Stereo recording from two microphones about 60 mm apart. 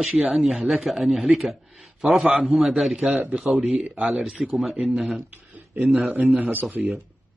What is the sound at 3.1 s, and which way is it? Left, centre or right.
Speech, right.